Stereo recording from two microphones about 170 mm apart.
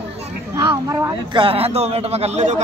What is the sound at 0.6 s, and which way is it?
A man's voice, 20° right (ahead or behind).